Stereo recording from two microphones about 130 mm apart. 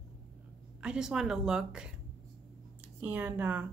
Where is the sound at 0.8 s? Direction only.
5° right (ahead or behind).